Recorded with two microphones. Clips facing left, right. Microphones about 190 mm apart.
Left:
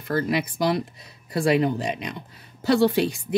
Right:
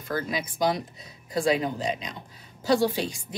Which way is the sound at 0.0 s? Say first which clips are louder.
Left 6 dB; 65° left (ahead or behind).